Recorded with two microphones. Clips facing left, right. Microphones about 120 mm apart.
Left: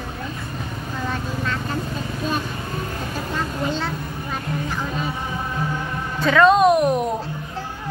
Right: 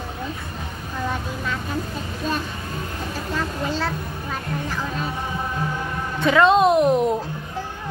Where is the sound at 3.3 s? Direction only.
5° right (ahead or behind).